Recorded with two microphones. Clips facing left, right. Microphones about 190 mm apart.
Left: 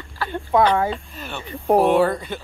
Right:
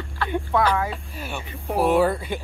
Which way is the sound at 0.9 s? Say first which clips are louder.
Left 2 dB; 10° right (ahead or behind).